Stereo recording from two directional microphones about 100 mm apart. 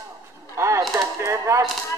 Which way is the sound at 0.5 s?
30° right (ahead or behind).